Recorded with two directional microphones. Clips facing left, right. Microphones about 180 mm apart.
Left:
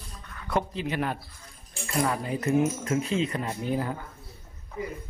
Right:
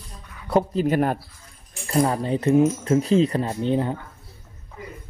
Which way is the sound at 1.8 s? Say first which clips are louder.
Right 6 dB; 30° right (ahead or behind).